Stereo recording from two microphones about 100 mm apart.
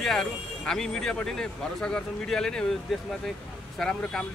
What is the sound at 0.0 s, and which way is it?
Speech, 5° left (ahead or behind).